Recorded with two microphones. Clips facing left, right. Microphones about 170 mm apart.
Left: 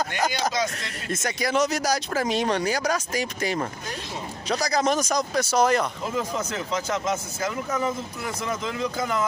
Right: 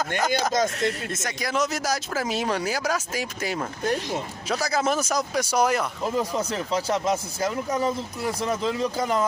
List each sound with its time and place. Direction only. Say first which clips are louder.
0.3 s speech: right 3 dB; 50° right (ahead or behind)
1.1 s speech: left 3 dB; centre (ahead or behind)
6.0 s speech: right 2 dB; 35° right (ahead or behind)